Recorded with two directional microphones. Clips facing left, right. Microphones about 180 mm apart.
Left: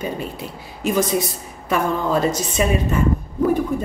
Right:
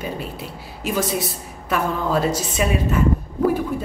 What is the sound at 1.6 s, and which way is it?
Speech, 5° right (ahead or behind).